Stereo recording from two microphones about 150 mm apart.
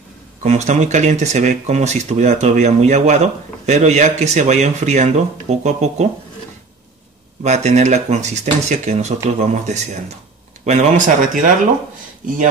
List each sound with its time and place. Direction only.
0.5 s speech: 50° right (ahead or behind)
7.4 s speech: 50° right (ahead or behind)